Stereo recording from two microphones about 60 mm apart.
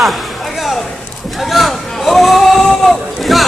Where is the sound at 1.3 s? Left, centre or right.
Centre.